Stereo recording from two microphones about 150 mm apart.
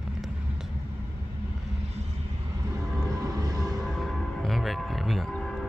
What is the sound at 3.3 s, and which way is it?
Music, 25° right (ahead or behind).